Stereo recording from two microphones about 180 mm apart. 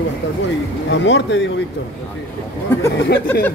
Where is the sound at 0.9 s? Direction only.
90° left.